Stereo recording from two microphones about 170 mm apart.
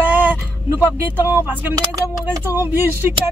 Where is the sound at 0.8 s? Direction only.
10° left (ahead or behind).